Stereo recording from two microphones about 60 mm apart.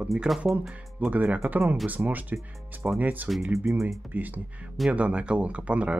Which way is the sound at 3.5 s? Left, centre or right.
Right.